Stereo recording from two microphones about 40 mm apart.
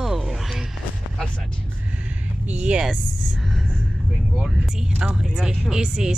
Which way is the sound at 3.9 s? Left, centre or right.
Centre.